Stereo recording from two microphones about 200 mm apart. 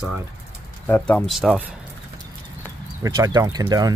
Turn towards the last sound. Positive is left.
turn(degrees=-20)  # may be behind; listen again after turning